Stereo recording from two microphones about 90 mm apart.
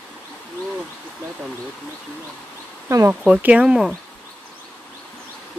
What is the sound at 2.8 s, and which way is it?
Speech, 30° right (ahead or behind).